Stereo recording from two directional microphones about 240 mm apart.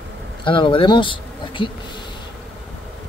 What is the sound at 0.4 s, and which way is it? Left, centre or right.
Speech, left.